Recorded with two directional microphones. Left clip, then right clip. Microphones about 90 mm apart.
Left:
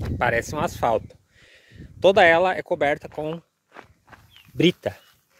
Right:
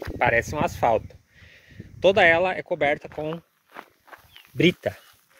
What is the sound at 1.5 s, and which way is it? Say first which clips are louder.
Speech: even; 55° left (ahead or behind).